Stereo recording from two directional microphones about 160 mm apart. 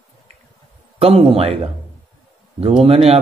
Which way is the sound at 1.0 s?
40° right (ahead or behind).